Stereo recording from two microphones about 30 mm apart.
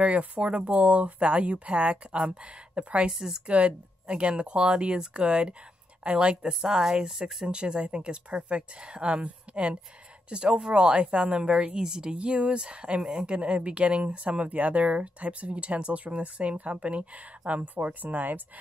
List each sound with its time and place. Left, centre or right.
0.4 s speech: right
3.1 s speech: centre
3.4 s speech: right
6.6 s speech: right
7.4 s speech: right